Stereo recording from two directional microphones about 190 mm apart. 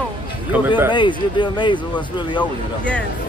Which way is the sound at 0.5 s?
10° right (ahead or behind).